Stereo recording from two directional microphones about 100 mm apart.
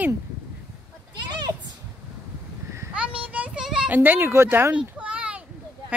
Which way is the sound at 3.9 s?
20° right (ahead or behind).